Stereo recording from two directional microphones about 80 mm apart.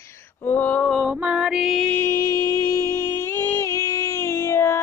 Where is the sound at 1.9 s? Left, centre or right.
Left.